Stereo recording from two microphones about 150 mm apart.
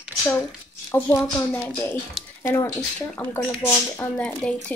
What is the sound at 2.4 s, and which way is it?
Speech, 20° left (ahead or behind).